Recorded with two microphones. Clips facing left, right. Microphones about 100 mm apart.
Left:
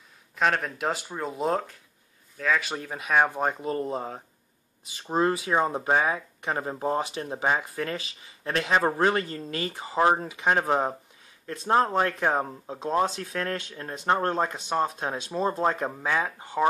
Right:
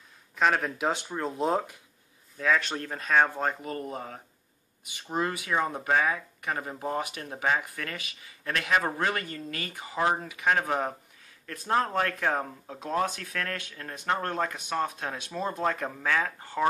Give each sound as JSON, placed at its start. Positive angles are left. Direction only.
{"t": 0.4, "sound": "speech", "side_deg": 0}